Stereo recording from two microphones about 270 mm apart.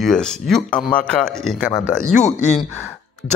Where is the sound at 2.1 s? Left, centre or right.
Left.